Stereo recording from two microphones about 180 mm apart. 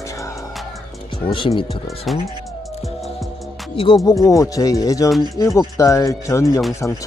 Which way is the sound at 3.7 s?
30° left (ahead or behind).